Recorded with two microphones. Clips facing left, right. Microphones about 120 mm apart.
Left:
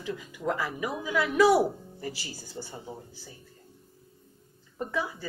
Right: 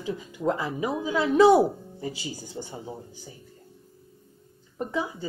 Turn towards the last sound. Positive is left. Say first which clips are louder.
# right 2 dB
turn(degrees=-20)  # may be behind; listen again after turning